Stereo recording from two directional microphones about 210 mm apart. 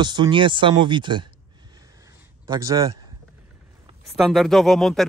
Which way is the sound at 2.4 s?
15° right (ahead or behind).